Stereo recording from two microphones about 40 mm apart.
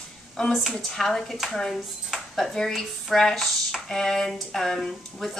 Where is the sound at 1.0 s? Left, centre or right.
Centre.